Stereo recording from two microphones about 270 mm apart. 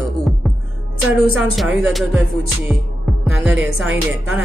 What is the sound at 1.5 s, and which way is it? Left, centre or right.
Music, centre.